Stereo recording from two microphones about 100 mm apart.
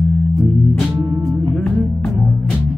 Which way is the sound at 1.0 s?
30° right (ahead or behind).